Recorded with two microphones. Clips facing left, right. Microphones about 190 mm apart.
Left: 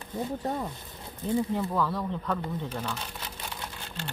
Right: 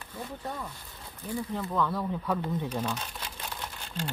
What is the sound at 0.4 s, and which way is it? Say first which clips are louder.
Speech: left 6 dB; 35° left (ahead or behind).